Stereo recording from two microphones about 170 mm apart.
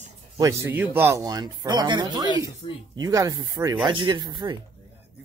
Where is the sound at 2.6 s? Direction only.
30° left (ahead or behind).